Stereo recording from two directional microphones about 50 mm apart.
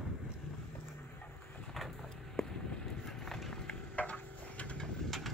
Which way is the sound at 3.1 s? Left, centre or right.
Centre.